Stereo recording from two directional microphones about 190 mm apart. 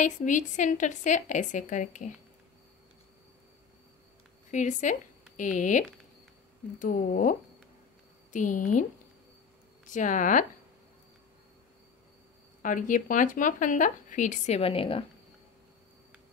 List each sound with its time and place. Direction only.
0.0 s a woman's voice: 40° left (ahead or behind)
4.5 s a woman's voice: 40° left (ahead or behind)
9.8 s a woman's voice: 40° left (ahead or behind)
12.6 s speech: 45° left (ahead or behind)